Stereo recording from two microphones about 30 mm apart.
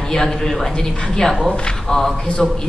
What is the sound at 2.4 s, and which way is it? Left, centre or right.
Speech, centre.